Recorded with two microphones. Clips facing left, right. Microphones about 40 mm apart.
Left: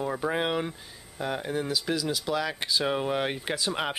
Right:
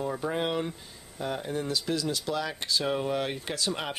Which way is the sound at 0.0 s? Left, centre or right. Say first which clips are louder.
Left 2 dB; centre.